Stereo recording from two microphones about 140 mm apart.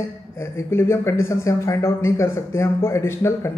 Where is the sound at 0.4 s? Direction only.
20° left (ahead or behind).